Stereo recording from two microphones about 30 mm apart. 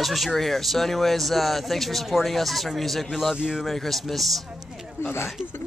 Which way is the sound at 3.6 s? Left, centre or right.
Centre.